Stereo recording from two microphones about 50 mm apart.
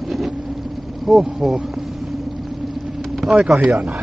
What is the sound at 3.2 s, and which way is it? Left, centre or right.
Speech, centre.